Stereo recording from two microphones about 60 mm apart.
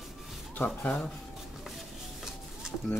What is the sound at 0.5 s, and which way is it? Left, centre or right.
Speech, left.